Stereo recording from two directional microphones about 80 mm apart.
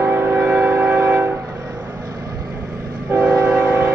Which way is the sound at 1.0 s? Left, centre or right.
Right.